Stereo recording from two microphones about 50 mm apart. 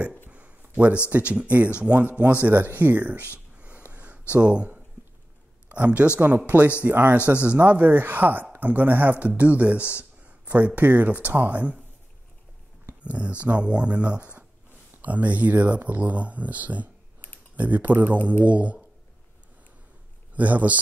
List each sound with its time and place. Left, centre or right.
0.3 s a sound: right
1.1 s speech: right
3.5 s a sound: right
4.3 s speech: right
5.9 s speech: right
13.0 s speech: right
20.3 s speech: right